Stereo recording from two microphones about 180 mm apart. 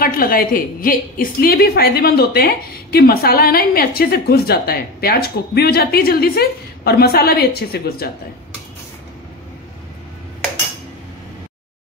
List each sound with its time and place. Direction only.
0.0 s a woman's voice: 55° left (ahead or behind)